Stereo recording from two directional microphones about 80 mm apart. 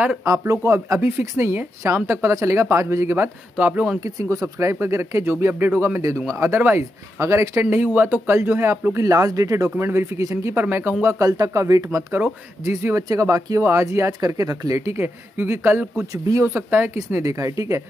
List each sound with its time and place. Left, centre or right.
0.2 s speech: right
1.2 s speech: right
1.5 s speech: right
3.5 s speech: right
4.0 s speech: right
7.7 s speech: right
9.0 s speech: right
9.8 s speech: right
11.1 s speech: right
12.6 s speech: right
14.2 s speech: right
15.0 s speech: right
17.2 s speech: right